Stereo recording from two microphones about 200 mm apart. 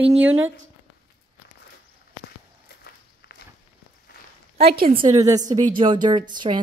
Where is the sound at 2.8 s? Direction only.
55° left (ahead or behind).